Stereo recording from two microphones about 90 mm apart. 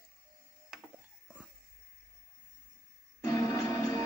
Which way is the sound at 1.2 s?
15° right (ahead or behind).